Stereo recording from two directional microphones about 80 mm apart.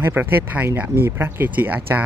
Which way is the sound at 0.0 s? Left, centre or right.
Right.